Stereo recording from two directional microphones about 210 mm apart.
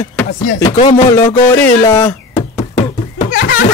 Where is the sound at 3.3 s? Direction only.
45° left (ahead or behind).